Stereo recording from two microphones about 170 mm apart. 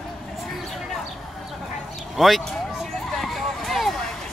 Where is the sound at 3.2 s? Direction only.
Centre (ahead or behind).